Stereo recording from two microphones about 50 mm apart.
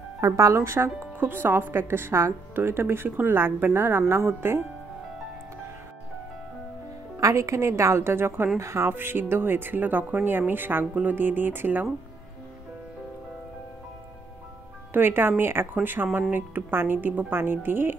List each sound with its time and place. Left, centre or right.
0.4 s speech: right
1.2 s speech: right
7.2 s a woman's voice: right
8.5 s a woman's voice: right
8.9 s a woman's voice: right
14.9 s a woman's voice: right